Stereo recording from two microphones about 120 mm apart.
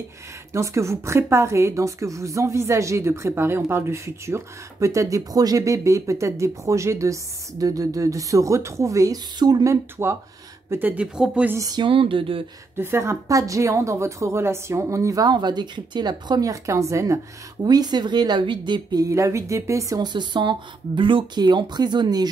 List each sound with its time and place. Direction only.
0.5 s a woman's voice: 25° right (ahead or behind)
11.5 s a woman's voice: 30° right (ahead or behind)
11.8 s a sound: 45° right (ahead or behind)
12.7 s a woman's voice: 20° right (ahead or behind); by 22.3 s 35° right (ahead or behind)